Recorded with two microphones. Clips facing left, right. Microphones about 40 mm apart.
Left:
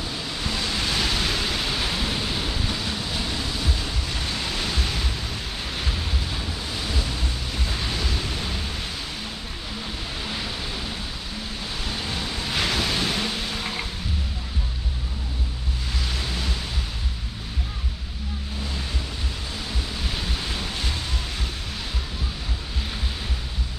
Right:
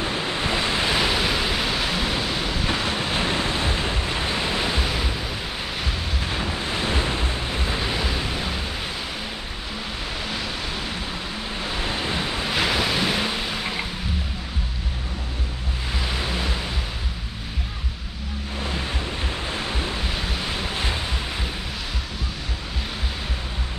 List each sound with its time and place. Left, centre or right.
0.0 s waves: right; by 2.6 s centre
2.6 s waves: right; by 5.1 s centre
6.2 s waves: right; by 8.6 s centre
11.6 s waves: right
12.5 s waves: centre
16.1 s waves: centre
18.6 s waves: right
20.0 s waves: centre